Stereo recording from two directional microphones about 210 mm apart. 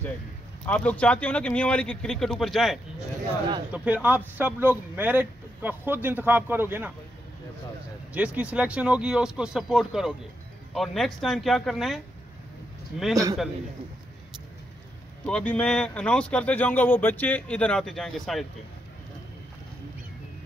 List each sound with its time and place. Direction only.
0.7 s speech: 5° left (ahead or behind); by 6.9 s 10° right (ahead or behind)
8.1 s speech: 5° right (ahead or behind)
13.1 s speech: 15° right (ahead or behind)
15.2 s speech: 5° left (ahead or behind)